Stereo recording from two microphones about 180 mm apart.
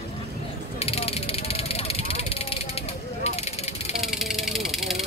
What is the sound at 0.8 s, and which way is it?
Vehicle, 35° left (ahead or behind).